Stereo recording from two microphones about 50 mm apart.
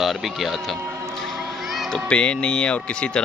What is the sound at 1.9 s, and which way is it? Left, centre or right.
Speech, left.